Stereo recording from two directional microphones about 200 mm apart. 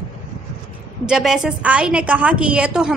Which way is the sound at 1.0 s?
Centre (ahead or behind).